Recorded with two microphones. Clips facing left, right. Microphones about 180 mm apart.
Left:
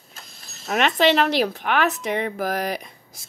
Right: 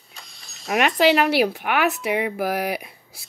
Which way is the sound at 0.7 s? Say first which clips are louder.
Right 1 dB; 5° right (ahead or behind).